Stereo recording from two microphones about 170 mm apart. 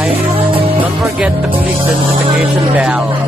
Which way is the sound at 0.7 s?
5° right (ahead or behind).